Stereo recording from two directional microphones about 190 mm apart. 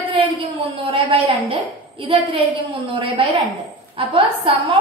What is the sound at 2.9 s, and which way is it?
A woman's voice, 25° right (ahead or behind).